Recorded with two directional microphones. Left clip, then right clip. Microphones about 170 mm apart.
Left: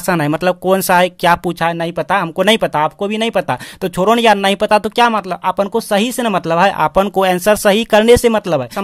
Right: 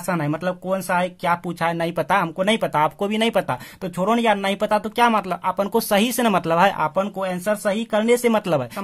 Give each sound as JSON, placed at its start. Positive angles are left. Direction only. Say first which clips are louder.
{"t": 0.1, "sound": "speech", "louder": "left 9 dB", "side_deg": 40}
{"t": 2.0, "sound": "speech", "louder": "left 3 dB", "side_deg": 20}
{"t": 2.3, "sound": "speech", "louder": "left 7 dB", "side_deg": 35}
{"t": 4.0, "sound": "speech", "louder": "left 8 dB", "side_deg": 35}
{"t": 5.1, "sound": "speech", "louder": "left 5 dB", "side_deg": 20}
{"t": 6.8, "sound": "speech", "louder": "left 9 dB", "side_deg": 45}